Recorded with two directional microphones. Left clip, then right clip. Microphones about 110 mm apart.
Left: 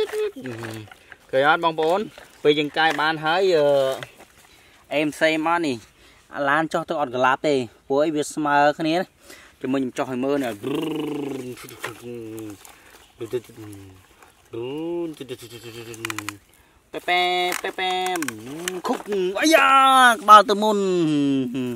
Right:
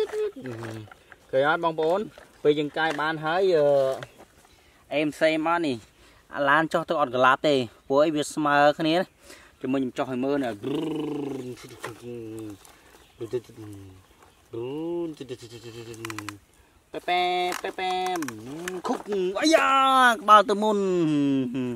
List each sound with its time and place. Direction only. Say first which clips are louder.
0.0 s speech: left 3 dB; 20° left (ahead or behind); by 9.4 s centre (ahead or behind)
9.6 s speech: left 3 dB; 15° left (ahead or behind)